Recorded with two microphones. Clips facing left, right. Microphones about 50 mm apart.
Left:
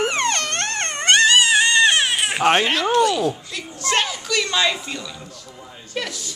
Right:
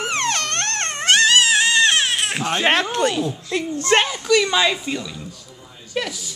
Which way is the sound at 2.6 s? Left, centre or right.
Right.